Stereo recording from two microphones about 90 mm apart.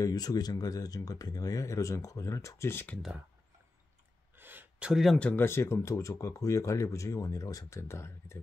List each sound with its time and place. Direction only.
0.0 s speech: 45° left (ahead or behind); by 3.0 s 25° left (ahead or behind)
4.4 s a sound: 20° right (ahead or behind)
5.0 s speech: 10° left (ahead or behind)
5.3 s speech: 25° left (ahead or behind)